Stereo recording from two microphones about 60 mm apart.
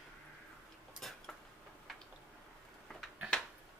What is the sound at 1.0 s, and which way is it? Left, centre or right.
Dishes, centre.